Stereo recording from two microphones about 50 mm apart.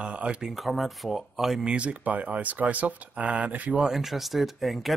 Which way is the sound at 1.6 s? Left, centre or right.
Right.